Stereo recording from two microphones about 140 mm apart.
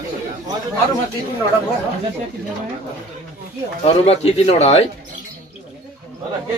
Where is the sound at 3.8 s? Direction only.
45° left (ahead or behind).